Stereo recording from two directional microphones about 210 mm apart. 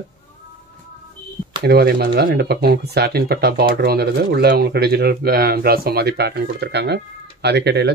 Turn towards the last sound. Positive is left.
turn(degrees=-55)  # may be behind; listen again after turning